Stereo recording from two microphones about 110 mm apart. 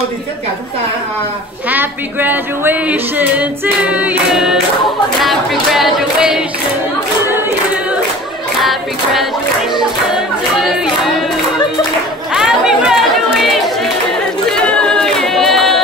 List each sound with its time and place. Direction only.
1.7 s speech: 15° right (ahead or behind)
5.2 s choir: centre (ahead or behind)
7.2 s choir: 15° right (ahead or behind)
8.5 s choir: centre (ahead or behind)
12.3 s chatter: 5° right (ahead or behind)
14.5 s chatter: 5° left (ahead or behind)